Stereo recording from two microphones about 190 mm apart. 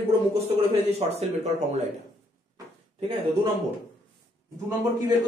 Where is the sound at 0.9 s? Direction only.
35° right (ahead or behind).